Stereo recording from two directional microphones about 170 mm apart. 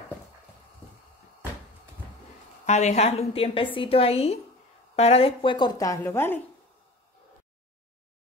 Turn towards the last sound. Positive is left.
turn(degrees=10)  # may be behind; listen again after turning